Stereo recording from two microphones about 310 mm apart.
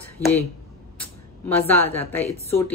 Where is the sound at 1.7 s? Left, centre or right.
Left.